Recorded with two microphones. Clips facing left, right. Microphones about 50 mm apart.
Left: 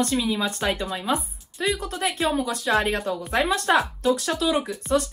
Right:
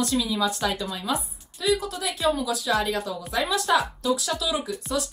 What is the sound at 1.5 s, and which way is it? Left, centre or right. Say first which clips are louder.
A woman's voice: right 1 dB; left.